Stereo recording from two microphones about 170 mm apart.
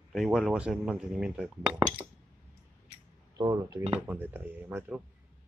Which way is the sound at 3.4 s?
25° right (ahead or behind).